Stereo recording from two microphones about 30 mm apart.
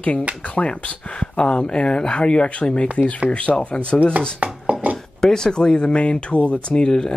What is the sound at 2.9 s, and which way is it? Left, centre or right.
Speech, left.